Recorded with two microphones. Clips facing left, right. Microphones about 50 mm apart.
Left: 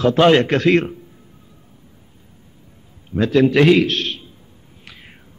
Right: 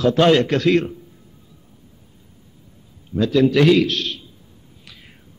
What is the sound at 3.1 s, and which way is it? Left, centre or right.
A man's voice, left.